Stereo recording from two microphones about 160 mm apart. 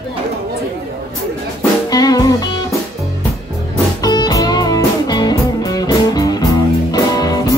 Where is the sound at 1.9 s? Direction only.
25° left (ahead or behind).